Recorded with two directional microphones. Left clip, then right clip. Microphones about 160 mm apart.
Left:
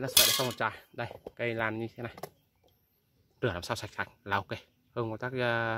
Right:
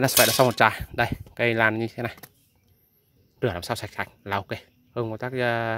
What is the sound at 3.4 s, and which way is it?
Speech, 20° right (ahead or behind).